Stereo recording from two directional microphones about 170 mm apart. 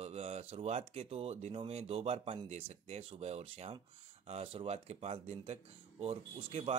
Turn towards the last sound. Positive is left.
turn(degrees=-35)  # may be behind; listen again after turning